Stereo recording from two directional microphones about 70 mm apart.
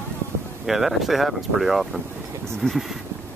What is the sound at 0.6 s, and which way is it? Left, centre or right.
Speech, centre.